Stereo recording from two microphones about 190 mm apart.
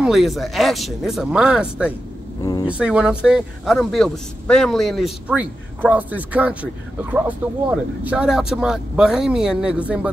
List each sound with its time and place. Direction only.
0.0 s a man's voice: centre (ahead or behind)
2.4 s speech: 20° left (ahead or behind)
2.7 s a man's voice: 5° right (ahead or behind)